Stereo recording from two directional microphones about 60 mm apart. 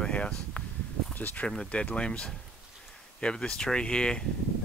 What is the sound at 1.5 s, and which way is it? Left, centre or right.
Speech, centre.